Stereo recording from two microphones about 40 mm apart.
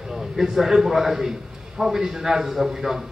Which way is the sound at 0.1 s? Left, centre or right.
Centre.